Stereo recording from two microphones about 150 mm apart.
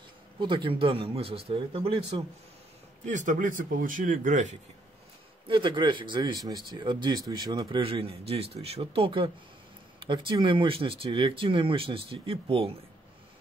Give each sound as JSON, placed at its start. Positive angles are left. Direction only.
{"t": 0.4, "sound": "speech", "side_deg": -35}
{"t": 3.1, "sound": "speech", "side_deg": -60}
{"t": 5.5, "sound": "speech", "side_deg": -30}